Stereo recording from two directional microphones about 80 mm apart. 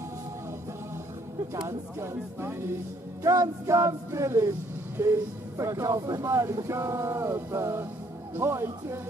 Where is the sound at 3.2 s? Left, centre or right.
Right.